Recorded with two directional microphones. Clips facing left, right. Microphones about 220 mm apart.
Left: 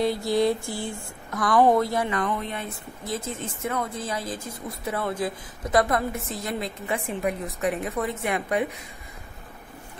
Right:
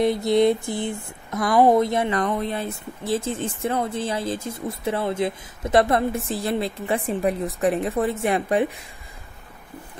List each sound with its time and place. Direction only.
0.0 s speech: 20° right (ahead or behind)
2.0 s speech: 35° right (ahead or behind)